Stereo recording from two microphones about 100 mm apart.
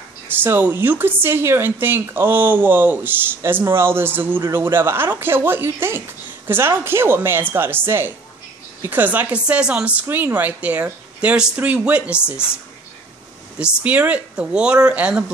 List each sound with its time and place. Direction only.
0.3 s a woman's voice: 20° right (ahead or behind)
13.8 s speech: 15° right (ahead or behind)